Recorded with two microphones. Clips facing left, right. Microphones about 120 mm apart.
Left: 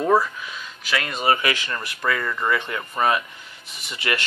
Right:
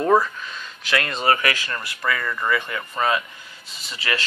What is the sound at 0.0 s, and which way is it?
Speech, 5° left (ahead or behind).